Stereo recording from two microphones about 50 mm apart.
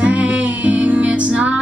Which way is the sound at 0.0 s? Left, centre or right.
Right.